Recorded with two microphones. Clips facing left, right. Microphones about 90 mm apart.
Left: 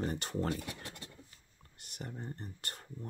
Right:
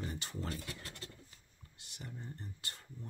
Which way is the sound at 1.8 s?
50° left (ahead or behind).